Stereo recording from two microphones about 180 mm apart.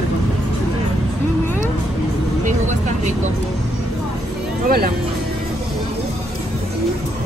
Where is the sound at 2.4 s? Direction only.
40° right (ahead or behind).